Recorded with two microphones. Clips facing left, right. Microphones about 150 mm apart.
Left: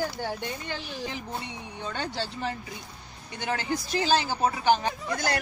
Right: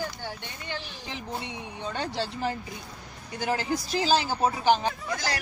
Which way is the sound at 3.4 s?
30° right (ahead or behind).